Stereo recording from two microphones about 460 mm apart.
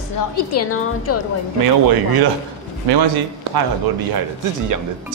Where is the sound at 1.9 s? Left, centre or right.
Right.